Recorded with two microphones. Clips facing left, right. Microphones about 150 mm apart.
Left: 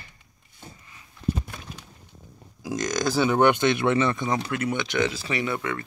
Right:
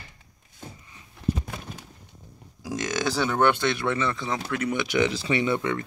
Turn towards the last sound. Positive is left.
turn(degrees=-20)  # may be behind; listen again after turning